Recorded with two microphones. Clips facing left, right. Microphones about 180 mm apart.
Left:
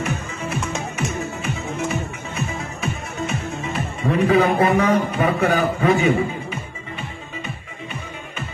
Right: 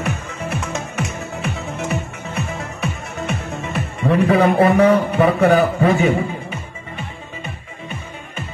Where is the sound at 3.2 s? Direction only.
60° right (ahead or behind).